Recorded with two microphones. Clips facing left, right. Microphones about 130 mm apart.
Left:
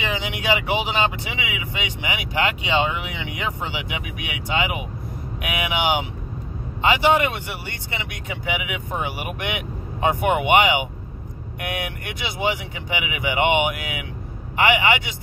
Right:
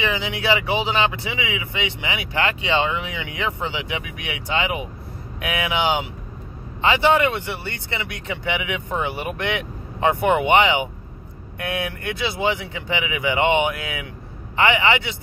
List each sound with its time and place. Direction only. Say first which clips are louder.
0.0 s speech: right 2 dB; 15° left (ahead or behind)